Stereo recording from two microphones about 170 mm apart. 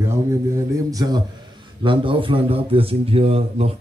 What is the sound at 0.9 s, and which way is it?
A man's voice, 20° right (ahead or behind).